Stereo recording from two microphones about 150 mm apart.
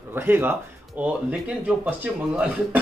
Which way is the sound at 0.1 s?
15° right (ahead or behind).